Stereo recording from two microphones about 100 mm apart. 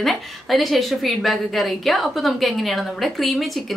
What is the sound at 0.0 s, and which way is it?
A woman's voice, centre (ahead or behind).